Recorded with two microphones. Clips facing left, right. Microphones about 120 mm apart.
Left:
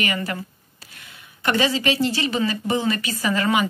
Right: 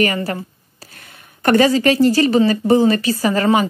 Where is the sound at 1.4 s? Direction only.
45° right (ahead or behind).